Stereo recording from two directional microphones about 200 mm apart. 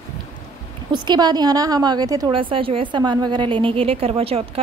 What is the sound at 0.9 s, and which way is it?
A woman's voice, 20° right (ahead or behind).